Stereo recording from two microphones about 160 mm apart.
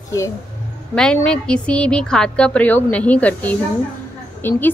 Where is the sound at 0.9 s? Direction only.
5° left (ahead or behind).